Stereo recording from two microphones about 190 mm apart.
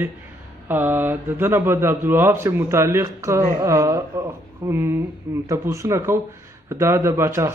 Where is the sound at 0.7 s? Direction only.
10° right (ahead or behind).